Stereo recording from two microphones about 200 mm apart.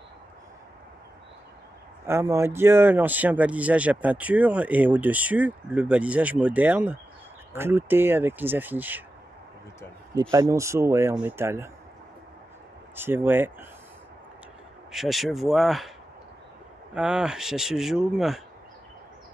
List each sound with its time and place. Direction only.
2.0 s speech: 15° right (ahead or behind)
10.3 s speech: 15° right (ahead or behind)
12.9 s speech: 10° right (ahead or behind)
14.9 s speech: centre (ahead or behind)
16.9 s speech: 5° right (ahead or behind)